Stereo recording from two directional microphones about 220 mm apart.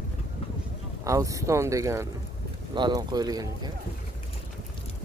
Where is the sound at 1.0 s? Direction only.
15° right (ahead or behind).